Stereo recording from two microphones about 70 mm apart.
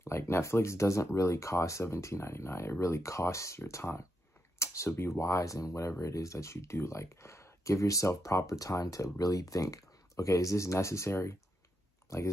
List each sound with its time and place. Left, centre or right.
0.0 s speech: left